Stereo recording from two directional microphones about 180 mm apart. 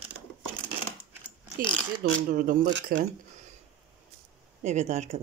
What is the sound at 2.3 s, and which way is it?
Speech, 50° right (ahead or behind).